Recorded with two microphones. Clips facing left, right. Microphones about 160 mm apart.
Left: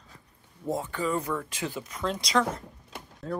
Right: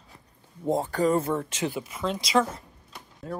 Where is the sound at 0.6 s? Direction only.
25° right (ahead or behind).